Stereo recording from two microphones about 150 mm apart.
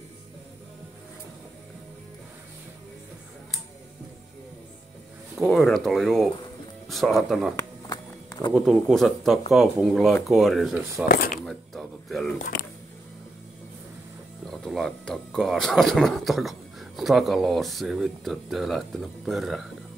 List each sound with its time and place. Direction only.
5.6 s speech: centre (ahead or behind)
7.5 s music: 25° left (ahead or behind)
8.5 s speech: centre (ahead or behind)
11.1 s speech: 70° left (ahead or behind)
11.4 s a sound: centre (ahead or behind)
14.5 s speech: centre (ahead or behind)